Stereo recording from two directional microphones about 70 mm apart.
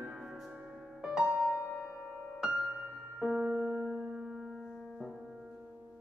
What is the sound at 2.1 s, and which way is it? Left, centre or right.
Music, centre.